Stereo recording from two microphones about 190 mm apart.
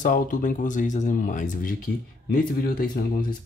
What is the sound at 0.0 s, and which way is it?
Speech, 45° left (ahead or behind).